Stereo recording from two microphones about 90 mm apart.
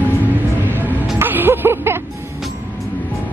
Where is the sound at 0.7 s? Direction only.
20° right (ahead or behind).